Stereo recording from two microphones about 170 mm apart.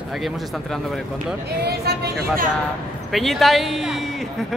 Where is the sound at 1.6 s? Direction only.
70° right (ahead or behind).